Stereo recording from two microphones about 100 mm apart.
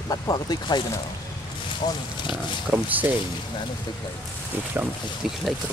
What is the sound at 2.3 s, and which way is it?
Speech, 15° right (ahead or behind).